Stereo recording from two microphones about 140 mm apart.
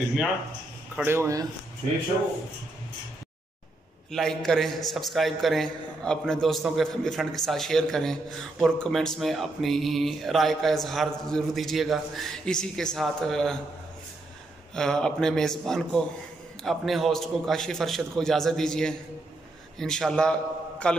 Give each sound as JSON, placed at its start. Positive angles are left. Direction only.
{"t": 1.0, "sound": "speech", "side_deg": -20}
{"t": 4.1, "sound": "a man's voice", "side_deg": 5}
{"t": 14.8, "sound": "a man's voice", "side_deg": 5}